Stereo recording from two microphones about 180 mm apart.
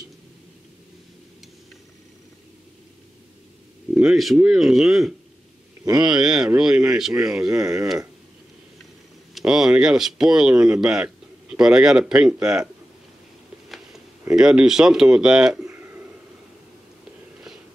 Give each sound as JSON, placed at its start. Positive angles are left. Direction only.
{"t": 3.9, "sound": "speech", "side_deg": -5}
{"t": 7.6, "sound": "speech", "side_deg": -20}
{"t": 9.3, "sound": "speech", "side_deg": -5}
{"t": 14.3, "sound": "speech", "side_deg": -5}
{"t": 15.6, "sound": "a sound", "side_deg": -15}